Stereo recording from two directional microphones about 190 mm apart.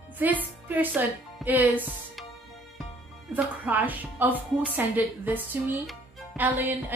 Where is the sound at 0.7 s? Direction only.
10° right (ahead or behind).